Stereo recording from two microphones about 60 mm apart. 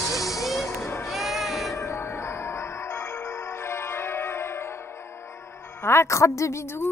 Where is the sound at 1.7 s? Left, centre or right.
Left.